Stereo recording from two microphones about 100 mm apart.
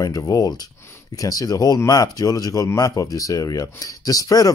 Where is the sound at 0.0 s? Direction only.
35° left (ahead or behind).